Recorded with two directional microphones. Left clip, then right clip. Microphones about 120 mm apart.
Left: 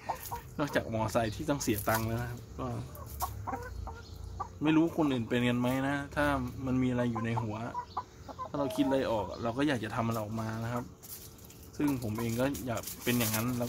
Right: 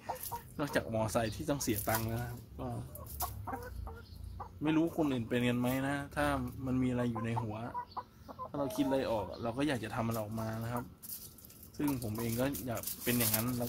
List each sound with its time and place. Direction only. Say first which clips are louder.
0.6 s speech: left 2 dB; 15° right (ahead or behind)
1.9 s speech: left 4 dB; centre (ahead or behind)
3.2 s chicken: left 4 dB; 75° right (ahead or behind)
4.6 s speech: left 4 dB; centre (ahead or behind)
8.0 s chicken: left 5 dB; 60° right (ahead or behind)
8.5 s speech: left 3 dB; centre (ahead or behind)